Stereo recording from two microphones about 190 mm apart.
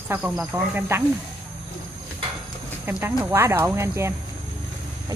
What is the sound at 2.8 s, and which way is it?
Speech, 10° right (ahead or behind).